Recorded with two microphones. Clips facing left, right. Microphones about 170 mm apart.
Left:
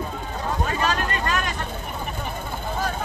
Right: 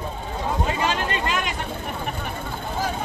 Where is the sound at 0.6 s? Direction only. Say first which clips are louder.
Left 1 dB; 20° right (ahead or behind).